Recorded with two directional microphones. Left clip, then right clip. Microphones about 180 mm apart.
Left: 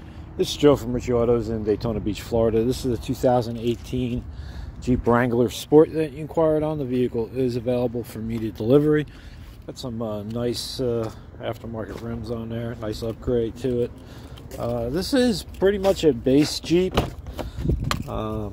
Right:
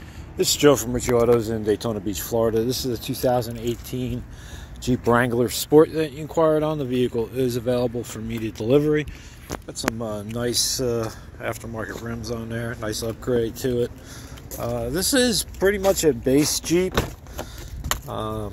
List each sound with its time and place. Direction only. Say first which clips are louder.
0.4 s speech: right 1 dB; 10° left (ahead or behind)
2.0 s speech: left 1 dB; 15° left (ahead or behind)
4.8 s speech: right 1 dB; 10° left (ahead or behind); by 9.1 s 30° left (ahead or behind)
9.7 s speech: right 2 dB; 10° left (ahead or behind)
14.6 s speech: even; 15° left (ahead or behind)
18.0 s speech: right 1 dB; 15° left (ahead or behind)